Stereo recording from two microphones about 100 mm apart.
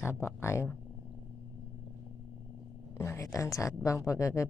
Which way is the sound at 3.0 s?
30° left (ahead or behind).